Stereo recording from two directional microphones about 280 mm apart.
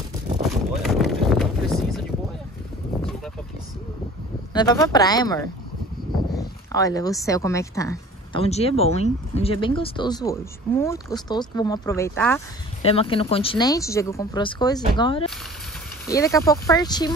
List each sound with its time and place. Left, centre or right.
0.4 s a sound: centre
4.6 s speech: centre
12.8 s speech: centre